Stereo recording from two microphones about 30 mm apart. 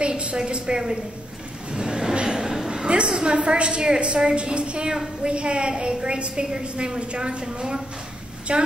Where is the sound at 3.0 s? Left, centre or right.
Right.